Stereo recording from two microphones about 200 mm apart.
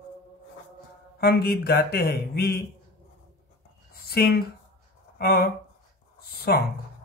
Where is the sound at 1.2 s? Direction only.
50° left (ahead or behind).